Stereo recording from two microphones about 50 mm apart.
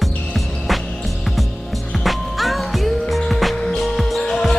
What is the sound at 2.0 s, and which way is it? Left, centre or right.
Music, centre.